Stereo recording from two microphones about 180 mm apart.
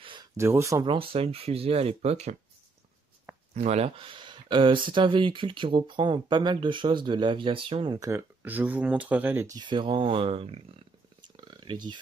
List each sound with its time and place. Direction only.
0.0 s a sound: 25° right (ahead or behind)
0.4 s speech: 15° right (ahead or behind)
0.8 s speech: 30° right (ahead or behind)
3.5 s speech: 35° right (ahead or behind); by 9.5 s 10° right (ahead or behind)
9.6 s speech: 25° right (ahead or behind)
11.3 s a sound: 25° right (ahead or behind)